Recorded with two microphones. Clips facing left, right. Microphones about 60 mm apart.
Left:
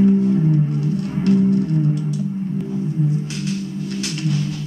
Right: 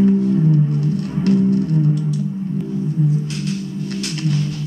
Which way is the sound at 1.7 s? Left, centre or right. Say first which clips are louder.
Right 2 dB; centre.